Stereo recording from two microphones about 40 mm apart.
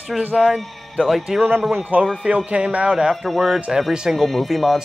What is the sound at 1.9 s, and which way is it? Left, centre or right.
Speech, right.